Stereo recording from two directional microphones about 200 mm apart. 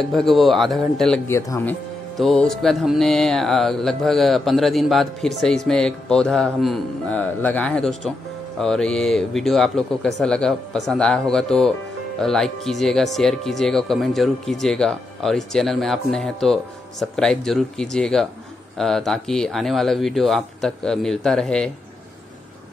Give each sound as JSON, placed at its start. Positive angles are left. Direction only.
{"t": 0.1, "sound": "music", "side_deg": 0}
{"t": 2.1, "sound": "music", "side_deg": 0}